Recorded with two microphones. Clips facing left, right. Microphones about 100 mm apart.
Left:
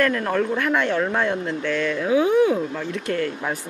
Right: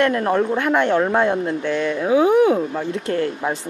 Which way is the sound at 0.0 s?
30° right (ahead or behind).